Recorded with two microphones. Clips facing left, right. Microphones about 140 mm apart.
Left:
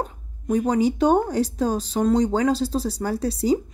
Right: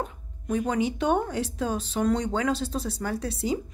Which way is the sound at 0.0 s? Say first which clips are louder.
Left 4 dB; 35° left (ahead or behind).